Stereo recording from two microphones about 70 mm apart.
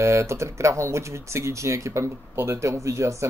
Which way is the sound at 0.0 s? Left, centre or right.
Right.